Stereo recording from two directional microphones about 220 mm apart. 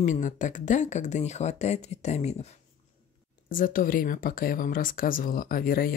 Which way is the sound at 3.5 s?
40° left (ahead or behind).